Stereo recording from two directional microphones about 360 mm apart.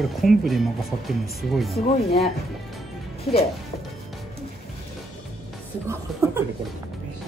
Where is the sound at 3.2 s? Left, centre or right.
Centre.